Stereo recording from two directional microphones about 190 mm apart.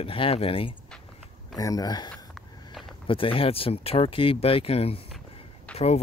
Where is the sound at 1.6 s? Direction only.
20° left (ahead or behind).